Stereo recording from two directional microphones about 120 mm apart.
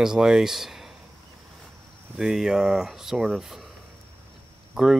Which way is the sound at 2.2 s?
5° right (ahead or behind).